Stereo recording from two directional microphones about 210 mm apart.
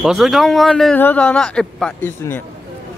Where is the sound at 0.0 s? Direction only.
Centre (ahead or behind).